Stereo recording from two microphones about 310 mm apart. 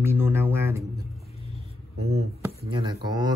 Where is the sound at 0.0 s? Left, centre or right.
Centre.